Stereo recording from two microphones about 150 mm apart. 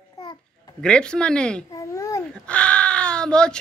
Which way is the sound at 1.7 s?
20° left (ahead or behind).